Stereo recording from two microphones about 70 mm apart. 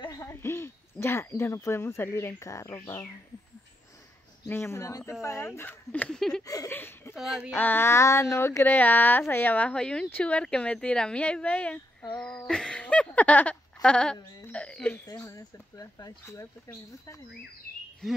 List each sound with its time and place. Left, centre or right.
0.3 s speech: left
4.5 s speech: left
5.9 s speech: centre
6.1 s speech: centre
6.4 s speech: left
6.7 s a sound: left
7.2 s speech: centre
7.5 s speech: left
15.0 s speech: left
16.3 s speech: left
18.0 s speech: centre